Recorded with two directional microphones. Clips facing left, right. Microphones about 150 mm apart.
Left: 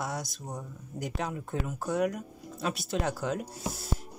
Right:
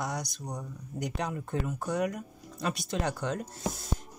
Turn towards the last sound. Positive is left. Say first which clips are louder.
# right 1 dB
turn(degrees=5)  # may be behind; listen again after turning